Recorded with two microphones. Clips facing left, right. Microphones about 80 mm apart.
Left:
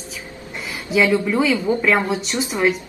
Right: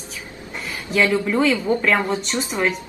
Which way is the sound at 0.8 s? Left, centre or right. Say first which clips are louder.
Left 2 dB; centre.